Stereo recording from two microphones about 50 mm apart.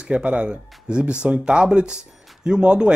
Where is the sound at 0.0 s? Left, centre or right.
Right.